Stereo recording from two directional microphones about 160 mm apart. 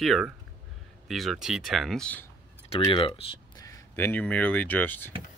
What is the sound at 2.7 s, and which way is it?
Speech, 30° left (ahead or behind).